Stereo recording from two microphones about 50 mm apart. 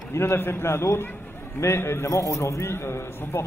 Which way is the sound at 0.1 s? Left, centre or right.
Left.